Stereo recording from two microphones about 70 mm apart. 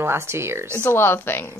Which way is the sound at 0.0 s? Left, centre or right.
Right.